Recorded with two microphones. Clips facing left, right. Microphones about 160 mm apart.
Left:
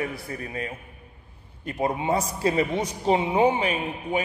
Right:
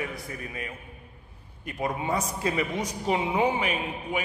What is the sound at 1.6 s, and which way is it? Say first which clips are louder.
A man's voice: left 4 dB; 30° left (ahead or behind).